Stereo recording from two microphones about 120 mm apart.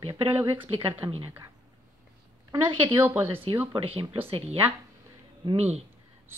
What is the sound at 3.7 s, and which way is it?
Speech, 50° right (ahead or behind).